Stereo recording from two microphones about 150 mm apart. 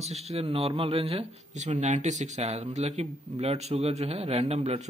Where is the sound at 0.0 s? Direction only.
45° right (ahead or behind).